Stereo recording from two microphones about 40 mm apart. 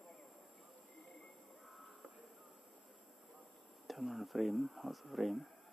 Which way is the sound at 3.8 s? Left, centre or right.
Centre.